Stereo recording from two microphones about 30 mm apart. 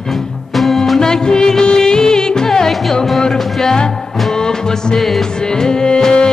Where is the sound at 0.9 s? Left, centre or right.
Left.